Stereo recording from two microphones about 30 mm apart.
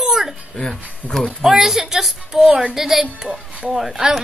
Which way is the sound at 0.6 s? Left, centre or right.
Left.